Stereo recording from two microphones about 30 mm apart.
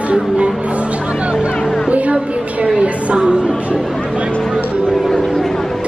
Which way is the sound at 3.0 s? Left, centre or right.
Right.